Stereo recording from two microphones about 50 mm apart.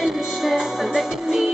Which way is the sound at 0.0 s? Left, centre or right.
Centre.